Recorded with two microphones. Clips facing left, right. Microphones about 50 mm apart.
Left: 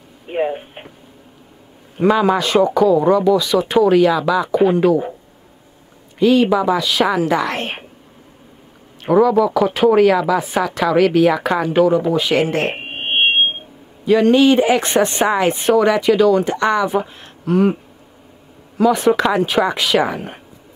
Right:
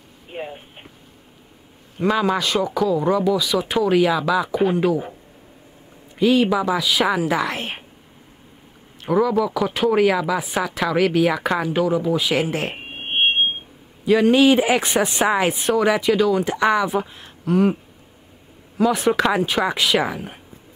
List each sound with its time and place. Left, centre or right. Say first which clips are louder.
0.3 s speech: left 12 dB; left
2.0 s speech: left 5 dB; centre
6.1 s speech: left 4 dB; centre
9.1 s speech: left 6 dB; centre
12.7 s music: left 5 dB; left
14.0 s speech: left 3 dB; centre
18.8 s speech: left 4 dB; centre